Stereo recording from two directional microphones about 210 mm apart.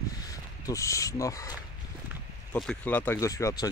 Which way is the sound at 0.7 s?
15° left (ahead or behind).